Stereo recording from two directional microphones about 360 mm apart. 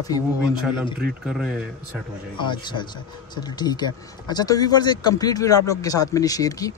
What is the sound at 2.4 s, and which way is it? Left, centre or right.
Speech, centre.